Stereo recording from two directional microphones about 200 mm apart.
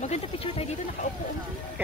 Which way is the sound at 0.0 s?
30° left (ahead or behind).